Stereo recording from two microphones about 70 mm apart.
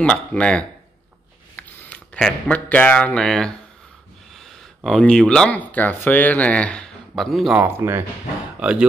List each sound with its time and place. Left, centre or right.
0.0 s speech: centre
2.1 s speech: centre
2.5 s speech: centre
4.4 s a sound: centre
5.0 s speech: centre
5.5 s speech: left
7.2 s speech: centre
7.8 s speech: right
8.5 s speech: centre